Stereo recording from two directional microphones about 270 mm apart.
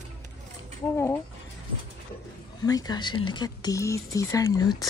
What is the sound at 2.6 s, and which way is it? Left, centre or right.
Speech, centre.